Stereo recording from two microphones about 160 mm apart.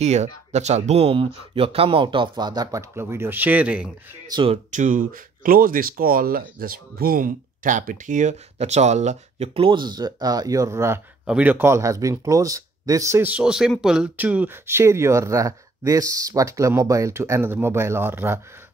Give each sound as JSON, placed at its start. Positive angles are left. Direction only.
{"t": 0.0, "sound": "speech", "side_deg": -45}
{"t": 4.3, "sound": "speech", "side_deg": -30}
{"t": 4.6, "sound": "speech", "side_deg": -50}